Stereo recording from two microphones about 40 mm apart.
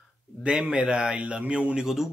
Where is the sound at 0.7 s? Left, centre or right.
Right.